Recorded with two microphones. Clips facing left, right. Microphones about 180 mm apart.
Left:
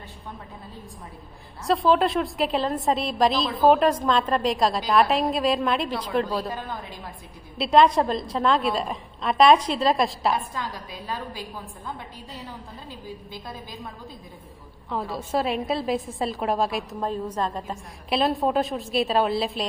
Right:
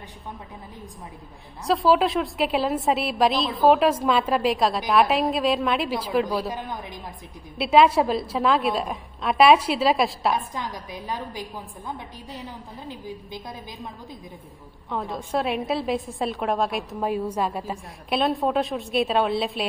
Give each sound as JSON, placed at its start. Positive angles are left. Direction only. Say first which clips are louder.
{"t": 1.7, "sound": "a woman's voice", "louder": "right 1 dB", "side_deg": 0}
{"t": 6.5, "sound": "a woman's voice", "louder": "right 1 dB", "side_deg": -20}
{"t": 7.6, "sound": "a woman's voice", "louder": "right 1 dB", "side_deg": -5}
{"t": 10.3, "sound": "a woman's voice", "louder": "right 1 dB", "side_deg": -20}
{"t": 12.8, "sound": "a woman's voice", "louder": "right 5 dB", "side_deg": -20}
{"t": 14.9, "sound": "a woman's voice", "louder": "even", "side_deg": 5}
{"t": 17.0, "sound": "a woman's voice", "louder": "right 3 dB", "side_deg": -10}